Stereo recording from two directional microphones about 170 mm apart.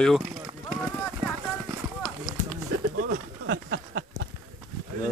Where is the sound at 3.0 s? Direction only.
75° right (ahead or behind).